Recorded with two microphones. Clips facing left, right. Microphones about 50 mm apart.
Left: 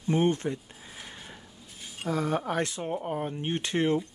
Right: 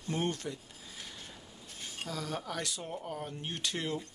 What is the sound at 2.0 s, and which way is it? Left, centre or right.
Speech, left.